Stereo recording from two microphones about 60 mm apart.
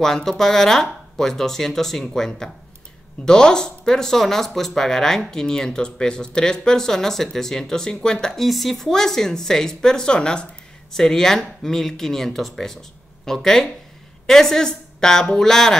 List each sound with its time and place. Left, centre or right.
0.0 s speech: centre